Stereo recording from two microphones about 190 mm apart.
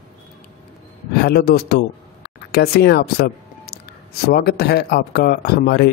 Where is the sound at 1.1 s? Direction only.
55° left (ahead or behind).